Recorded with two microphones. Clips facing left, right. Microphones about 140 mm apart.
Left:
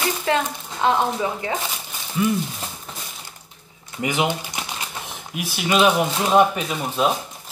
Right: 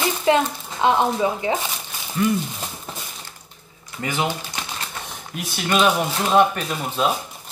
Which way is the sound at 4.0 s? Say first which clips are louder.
Left 2 dB; 15° left (ahead or behind).